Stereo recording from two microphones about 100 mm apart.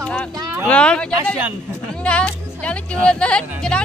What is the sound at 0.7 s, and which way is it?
Speech, 10° left (ahead or behind).